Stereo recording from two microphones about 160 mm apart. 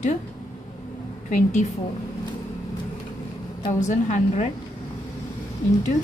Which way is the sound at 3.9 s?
45° left (ahead or behind).